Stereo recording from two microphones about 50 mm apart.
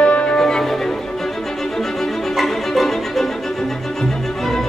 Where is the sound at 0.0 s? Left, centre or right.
Left.